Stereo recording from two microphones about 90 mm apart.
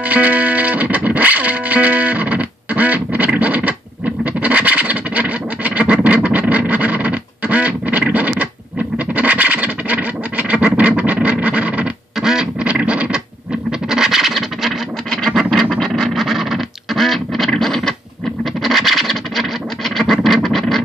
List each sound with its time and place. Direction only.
0.0 s music: 15° right (ahead or behind)
4.2 s scratch: 15° right (ahead or behind); by 15.6 s 5° left (ahead or behind)
15.7 s a sound: 5° left (ahead or behind)
18.4 s scratch: centre (ahead or behind)